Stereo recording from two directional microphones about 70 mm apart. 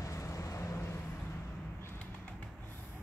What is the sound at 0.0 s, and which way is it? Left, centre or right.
Vehicle, left.